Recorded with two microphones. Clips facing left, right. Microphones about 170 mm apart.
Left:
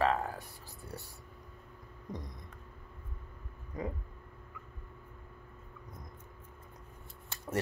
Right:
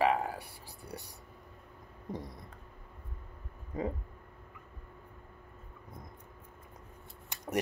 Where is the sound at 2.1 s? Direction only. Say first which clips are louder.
Right 3 dB; 25° right (ahead or behind).